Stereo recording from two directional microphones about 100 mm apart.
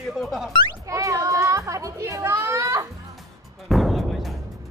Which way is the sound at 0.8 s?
30° right (ahead or behind).